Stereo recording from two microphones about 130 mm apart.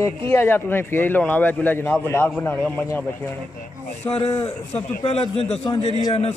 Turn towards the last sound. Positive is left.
turn(degrees=55)  # may be behind; listen again after turning